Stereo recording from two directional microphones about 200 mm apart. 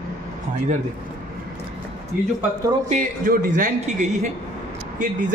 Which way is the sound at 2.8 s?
40° right (ahead or behind).